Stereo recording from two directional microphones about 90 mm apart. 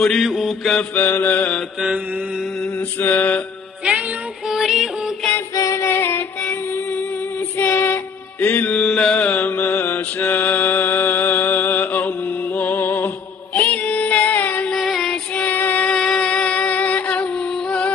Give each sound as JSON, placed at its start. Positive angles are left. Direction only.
{"t": 0.0, "sound": "mantra", "side_deg": 0}
{"t": 0.9, "sound": "mantra", "side_deg": 20}
{"t": 3.0, "sound": "mantra", "side_deg": 15}
{"t": 4.5, "sound": "music", "side_deg": -5}
{"t": 5.5, "sound": "music", "side_deg": 35}
{"t": 7.5, "sound": "music", "side_deg": 25}
{"t": 8.8, "sound": "mantra", "side_deg": 5}
{"t": 12.5, "sound": "music", "side_deg": 20}
{"t": 14.7, "sound": "music", "side_deg": 0}
{"t": 15.3, "sound": "music", "side_deg": 20}